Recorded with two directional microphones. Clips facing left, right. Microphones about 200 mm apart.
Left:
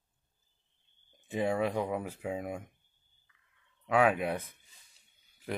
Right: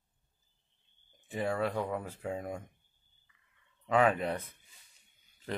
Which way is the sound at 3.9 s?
5° left (ahead or behind).